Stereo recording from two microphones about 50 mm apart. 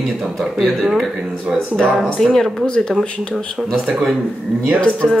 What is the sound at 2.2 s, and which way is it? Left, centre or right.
Speech, centre.